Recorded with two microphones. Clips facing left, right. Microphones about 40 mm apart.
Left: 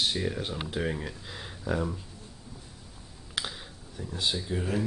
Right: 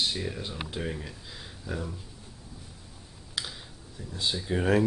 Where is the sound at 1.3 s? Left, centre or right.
Left.